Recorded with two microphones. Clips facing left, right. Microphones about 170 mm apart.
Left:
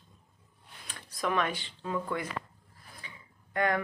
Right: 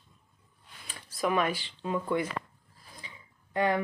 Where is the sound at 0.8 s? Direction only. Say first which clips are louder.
Right 3 dB; 5° right (ahead or behind).